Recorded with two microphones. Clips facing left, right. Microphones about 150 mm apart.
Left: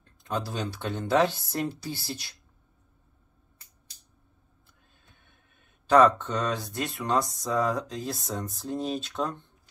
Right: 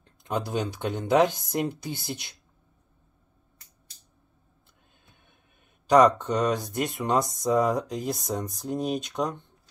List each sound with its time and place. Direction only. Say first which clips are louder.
0.0 s speech: right 2 dB; 20° right (ahead or behind)
5.9 s speech: right 1 dB; 15° right (ahead or behind)